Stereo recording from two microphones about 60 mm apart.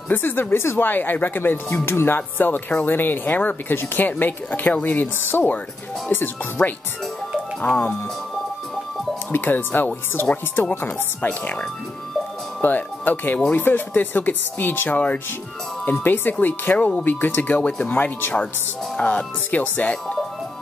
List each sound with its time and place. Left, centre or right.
0.1 s speech: left
9.3 s speech: left
12.6 s speech: left
17.6 s speech: left